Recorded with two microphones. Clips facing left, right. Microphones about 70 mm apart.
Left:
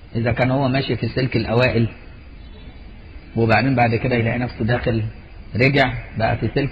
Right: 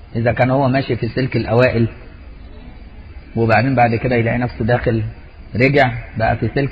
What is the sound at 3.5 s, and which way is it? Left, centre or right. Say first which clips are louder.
Speech: right 3 dB; right.